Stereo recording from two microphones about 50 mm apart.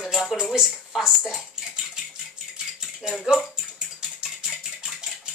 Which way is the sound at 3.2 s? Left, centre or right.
Centre.